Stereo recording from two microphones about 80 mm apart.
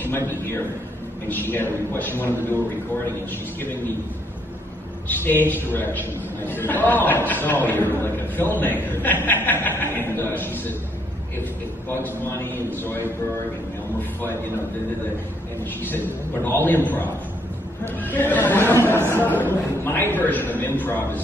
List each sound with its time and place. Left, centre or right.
0.0 s a man's voice: left
5.0 s a man's voice: left
11.9 s a man's voice: left
15.8 s a man's voice: left